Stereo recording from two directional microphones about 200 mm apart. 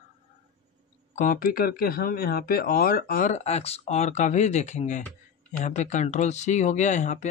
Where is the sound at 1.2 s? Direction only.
45° left (ahead or behind).